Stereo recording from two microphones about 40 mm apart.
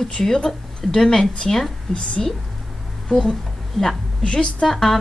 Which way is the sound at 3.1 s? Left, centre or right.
Centre.